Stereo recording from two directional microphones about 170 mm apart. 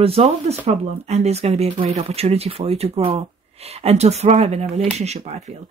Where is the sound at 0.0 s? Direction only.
35° right (ahead or behind).